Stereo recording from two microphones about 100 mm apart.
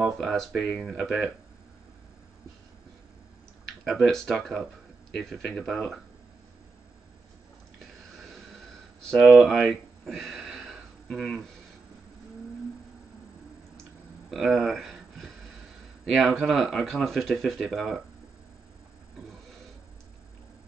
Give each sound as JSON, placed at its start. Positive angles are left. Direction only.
{"t": 0.0, "sound": "speech", "side_deg": 0}
{"t": 3.6, "sound": "speech", "side_deg": 0}
{"t": 9.3, "sound": "a sound", "side_deg": 0}
{"t": 14.3, "sound": "speech", "side_deg": -5}